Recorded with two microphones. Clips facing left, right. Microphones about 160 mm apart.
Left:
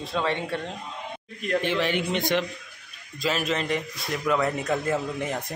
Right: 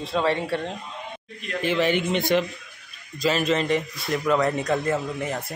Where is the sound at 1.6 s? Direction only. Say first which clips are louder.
Right 8 dB; centre (ahead or behind).